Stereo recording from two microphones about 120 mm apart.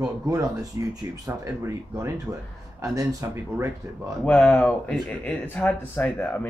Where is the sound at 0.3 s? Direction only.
30° right (ahead or behind).